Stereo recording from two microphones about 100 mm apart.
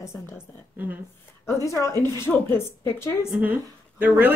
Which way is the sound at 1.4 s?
30° left (ahead or behind).